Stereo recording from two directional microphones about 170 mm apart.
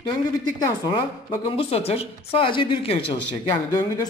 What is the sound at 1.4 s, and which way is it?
Speech, 35° left (ahead or behind).